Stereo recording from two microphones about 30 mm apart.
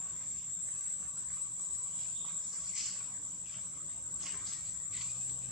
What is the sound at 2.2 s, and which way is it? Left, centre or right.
Cricket, centre.